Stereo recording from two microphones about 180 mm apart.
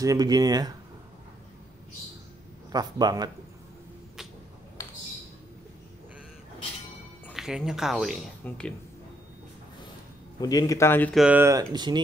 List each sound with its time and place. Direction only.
0.0 s speech: 20° right (ahead or behind)
2.7 s speech: 20° right (ahead or behind)
7.3 s speech: 5° right (ahead or behind)
10.4 s speech: 20° left (ahead or behind)
11.1 s speech: 10° right (ahead or behind)